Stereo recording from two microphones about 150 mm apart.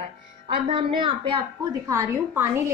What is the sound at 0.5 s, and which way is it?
Speech, 35° right (ahead or behind).